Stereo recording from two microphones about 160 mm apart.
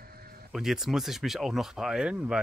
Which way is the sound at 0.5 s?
5° right (ahead or behind).